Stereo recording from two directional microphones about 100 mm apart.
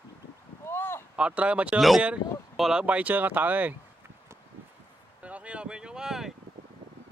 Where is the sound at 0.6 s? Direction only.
25° left (ahead or behind).